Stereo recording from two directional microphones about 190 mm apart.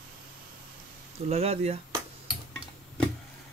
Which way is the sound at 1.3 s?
35° right (ahead or behind).